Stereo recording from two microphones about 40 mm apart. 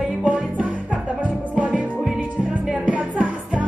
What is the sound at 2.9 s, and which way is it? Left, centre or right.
Music, right.